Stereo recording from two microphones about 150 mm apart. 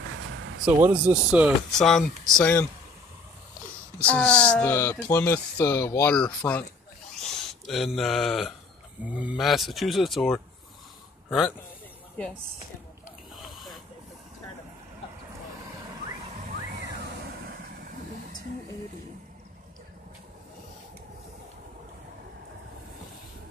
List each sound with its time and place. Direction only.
0.8 s speech: 10° right (ahead or behind)
1.7 s speech: 5° left (ahead or behind)
4.0 s a man's voice: 10° left (ahead or behind)
13.5 s hiss: centre (ahead or behind)